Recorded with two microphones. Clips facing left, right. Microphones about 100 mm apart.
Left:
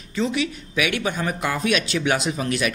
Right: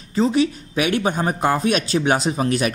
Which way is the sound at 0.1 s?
35° right (ahead or behind).